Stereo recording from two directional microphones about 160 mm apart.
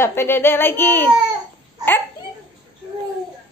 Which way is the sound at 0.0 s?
15° left (ahead or behind).